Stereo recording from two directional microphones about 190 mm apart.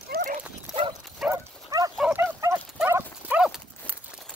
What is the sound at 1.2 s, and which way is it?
Dog, 15° right (ahead or behind).